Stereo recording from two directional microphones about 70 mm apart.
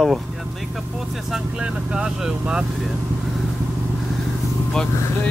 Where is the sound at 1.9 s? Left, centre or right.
Centre.